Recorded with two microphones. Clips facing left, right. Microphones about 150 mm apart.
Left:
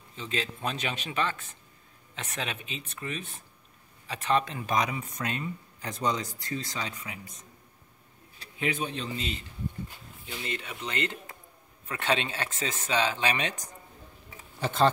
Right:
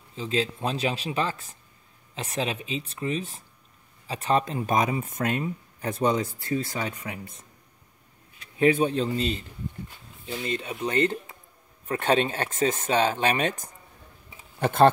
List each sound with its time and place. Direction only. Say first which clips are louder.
0.1 s speech: right 7 dB; 30° right (ahead or behind); by 6.9 s 50° right (ahead or behind)
8.5 s speech: right 11 dB; 35° right (ahead or behind)
8.8 s speech: right 9 dB; 45° right (ahead or behind)
10.2 s speech: right 6 dB; 30° right (ahead or behind)
11.9 s speech: right 6 dB; 45° right (ahead or behind)